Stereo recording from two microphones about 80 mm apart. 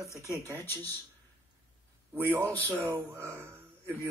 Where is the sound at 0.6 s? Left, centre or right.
Left.